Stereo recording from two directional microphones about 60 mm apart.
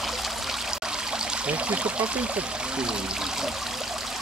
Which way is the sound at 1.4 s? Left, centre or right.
Centre.